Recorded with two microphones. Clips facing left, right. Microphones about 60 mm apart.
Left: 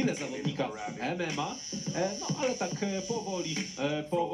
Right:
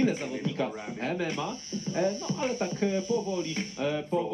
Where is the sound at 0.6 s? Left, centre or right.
Centre.